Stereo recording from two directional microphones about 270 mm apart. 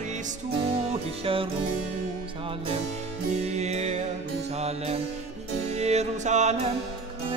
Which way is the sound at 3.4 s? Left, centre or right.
Right.